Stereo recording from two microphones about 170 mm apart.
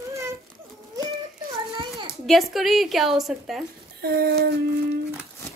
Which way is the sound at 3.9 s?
65° right (ahead or behind).